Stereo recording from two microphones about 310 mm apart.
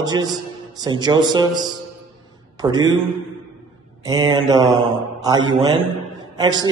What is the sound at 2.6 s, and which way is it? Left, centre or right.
Speech, centre.